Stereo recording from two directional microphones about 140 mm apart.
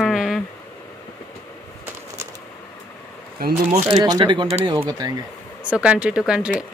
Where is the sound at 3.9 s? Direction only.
30° right (ahead or behind).